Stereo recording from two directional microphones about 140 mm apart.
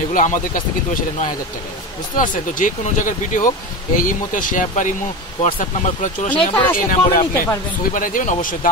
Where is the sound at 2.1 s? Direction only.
70° left (ahead or behind).